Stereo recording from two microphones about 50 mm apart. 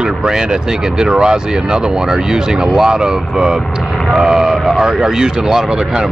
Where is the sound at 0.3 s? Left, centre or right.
Centre.